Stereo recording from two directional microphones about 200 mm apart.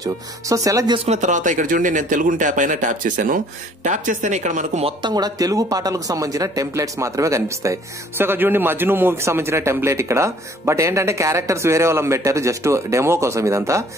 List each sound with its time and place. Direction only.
0.0 s speech: 15° right (ahead or behind)